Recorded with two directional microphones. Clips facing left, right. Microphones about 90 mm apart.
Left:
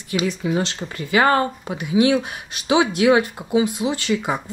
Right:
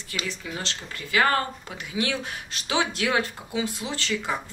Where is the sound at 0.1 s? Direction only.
15° left (ahead or behind).